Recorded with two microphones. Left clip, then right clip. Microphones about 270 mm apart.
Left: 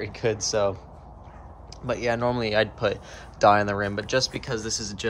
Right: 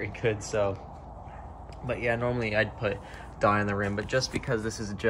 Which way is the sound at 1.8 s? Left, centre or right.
Centre.